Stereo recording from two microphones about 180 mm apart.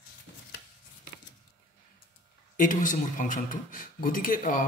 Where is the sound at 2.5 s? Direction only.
45° left (ahead or behind).